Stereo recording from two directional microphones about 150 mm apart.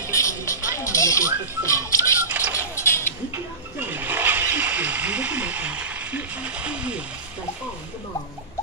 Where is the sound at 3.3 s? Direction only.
10° right (ahead or behind).